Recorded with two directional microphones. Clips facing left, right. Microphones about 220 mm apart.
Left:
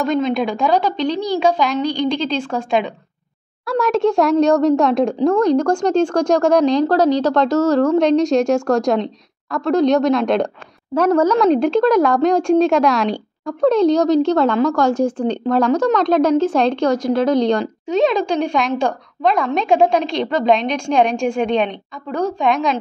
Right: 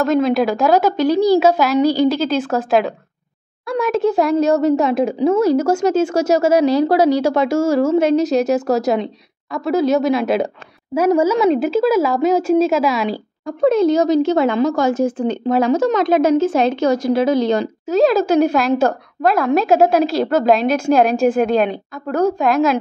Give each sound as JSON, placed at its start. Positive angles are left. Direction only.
{"t": 0.0, "sound": "a woman's voice", "side_deg": -5}
{"t": 14.5, "sound": "a woman's voice", "side_deg": -20}
{"t": 14.8, "sound": "a woman's voice", "side_deg": -5}